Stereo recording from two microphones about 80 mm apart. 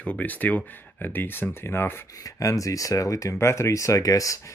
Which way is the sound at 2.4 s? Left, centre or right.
Left.